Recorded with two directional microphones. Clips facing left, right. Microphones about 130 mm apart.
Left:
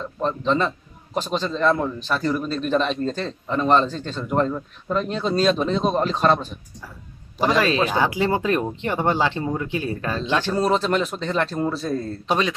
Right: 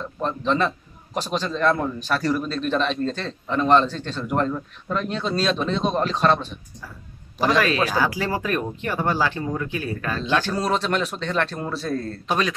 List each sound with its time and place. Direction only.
0.2 s a man's voice: centre (ahead or behind)
7.3 s speech: 25° left (ahead or behind)
10.4 s a man's voice: centre (ahead or behind)
12.3 s speech: 25° left (ahead or behind)